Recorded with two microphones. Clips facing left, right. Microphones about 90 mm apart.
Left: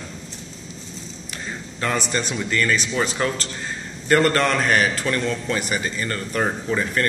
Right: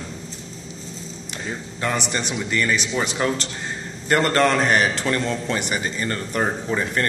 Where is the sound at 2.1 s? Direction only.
20° right (ahead or behind).